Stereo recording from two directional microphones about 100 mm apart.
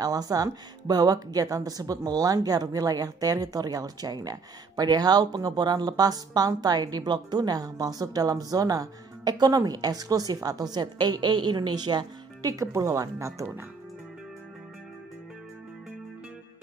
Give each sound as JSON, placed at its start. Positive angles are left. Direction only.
{"t": 0.0, "sound": "speech", "side_deg": -40}